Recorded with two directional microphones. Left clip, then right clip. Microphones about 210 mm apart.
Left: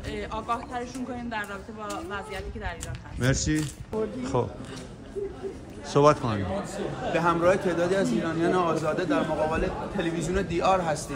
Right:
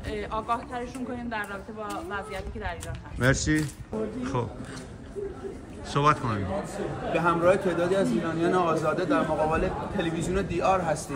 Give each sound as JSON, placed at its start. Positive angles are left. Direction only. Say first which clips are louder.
{"t": 0.1, "sound": "a man's voice", "louder": "right 1 dB", "side_deg": 0}
{"t": 4.2, "sound": "speech", "louder": "left 4 dB", "side_deg": 15}
{"t": 5.9, "sound": "a man's voice", "louder": "left 3 dB", "side_deg": 20}
{"t": 6.3, "sound": "a man's voice", "louder": "even", "side_deg": 0}